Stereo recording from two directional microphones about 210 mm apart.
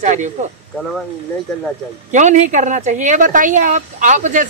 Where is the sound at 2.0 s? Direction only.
35° right (ahead or behind).